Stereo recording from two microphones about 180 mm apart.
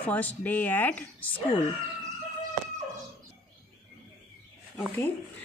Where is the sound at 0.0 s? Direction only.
10° left (ahead or behind).